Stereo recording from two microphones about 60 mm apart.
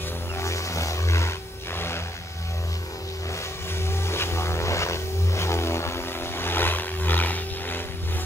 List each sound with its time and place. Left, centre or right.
0.4 s a sound: left
1.7 s music: left
3.7 s vehicle: left